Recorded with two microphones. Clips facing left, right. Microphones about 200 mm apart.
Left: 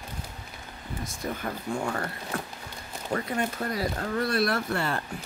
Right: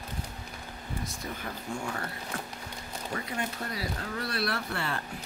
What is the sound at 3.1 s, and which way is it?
Speech, 50° left (ahead or behind).